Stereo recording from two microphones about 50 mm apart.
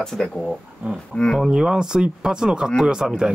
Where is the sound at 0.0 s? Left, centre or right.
Centre.